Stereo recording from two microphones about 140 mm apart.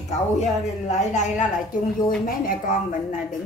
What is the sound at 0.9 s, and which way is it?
Speech, 60° left (ahead or behind).